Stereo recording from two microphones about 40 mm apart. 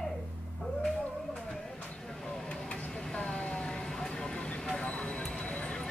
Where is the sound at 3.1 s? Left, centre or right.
Left.